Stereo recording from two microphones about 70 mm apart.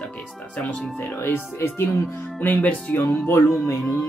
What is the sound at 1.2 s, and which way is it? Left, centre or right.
Speech, left.